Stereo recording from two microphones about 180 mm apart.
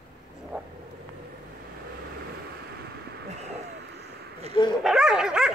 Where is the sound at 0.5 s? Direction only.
5° right (ahead or behind).